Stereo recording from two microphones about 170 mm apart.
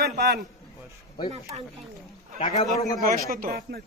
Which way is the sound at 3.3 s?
60° right (ahead or behind).